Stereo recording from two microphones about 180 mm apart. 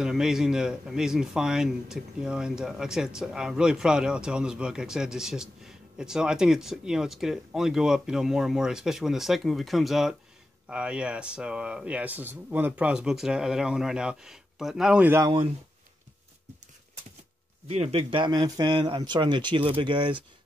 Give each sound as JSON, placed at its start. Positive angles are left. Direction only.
{"t": 0.0, "sound": "a man's voice", "side_deg": -5}
{"t": 17.6, "sound": "a man's voice", "side_deg": -35}